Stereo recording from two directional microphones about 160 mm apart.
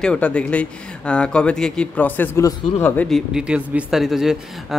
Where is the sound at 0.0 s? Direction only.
5° left (ahead or behind).